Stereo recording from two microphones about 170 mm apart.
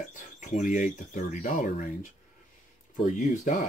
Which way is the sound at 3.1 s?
50° left (ahead or behind).